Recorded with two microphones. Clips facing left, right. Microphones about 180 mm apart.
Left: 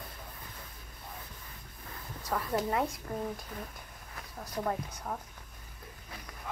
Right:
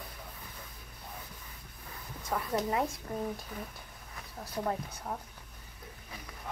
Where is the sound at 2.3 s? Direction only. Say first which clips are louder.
Even; 10° right (ahead or behind).